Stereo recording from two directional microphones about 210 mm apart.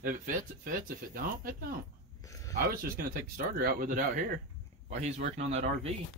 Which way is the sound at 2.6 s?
45° right (ahead or behind).